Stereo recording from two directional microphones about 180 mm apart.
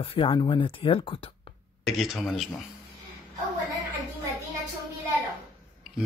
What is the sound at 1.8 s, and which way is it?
Speech, centre (ahead or behind).